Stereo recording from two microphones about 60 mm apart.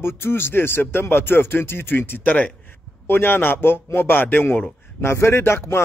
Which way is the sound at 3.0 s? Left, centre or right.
Left.